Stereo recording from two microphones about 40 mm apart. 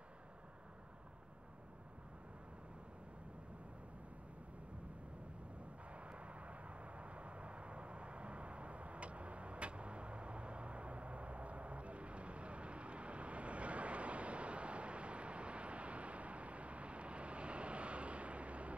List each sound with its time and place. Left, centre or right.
5.9 s vehicle: right